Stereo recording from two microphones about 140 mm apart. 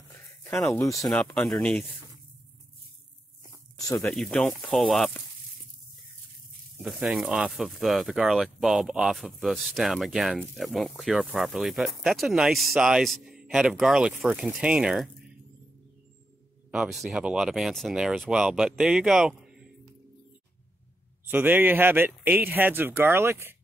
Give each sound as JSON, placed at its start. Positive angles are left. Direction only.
{"t": 0.7, "sound": "speech", "side_deg": 20}
{"t": 1.0, "sound": "speech", "side_deg": 10}
{"t": 4.0, "sound": "speech", "side_deg": 5}
{"t": 6.8, "sound": "speech", "side_deg": -5}
{"t": 16.7, "sound": "speech", "side_deg": -5}
{"t": 21.3, "sound": "speech", "side_deg": -10}